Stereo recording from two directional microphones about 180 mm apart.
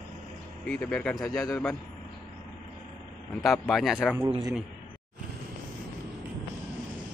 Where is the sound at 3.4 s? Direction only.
Centre (ahead or behind).